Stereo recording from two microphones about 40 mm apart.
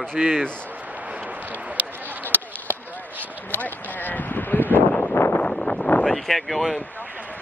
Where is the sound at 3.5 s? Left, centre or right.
Left.